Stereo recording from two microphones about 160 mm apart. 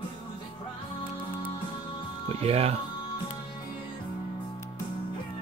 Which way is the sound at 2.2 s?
40° right (ahead or behind).